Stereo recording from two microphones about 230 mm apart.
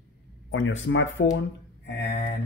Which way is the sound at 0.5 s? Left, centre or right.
Left.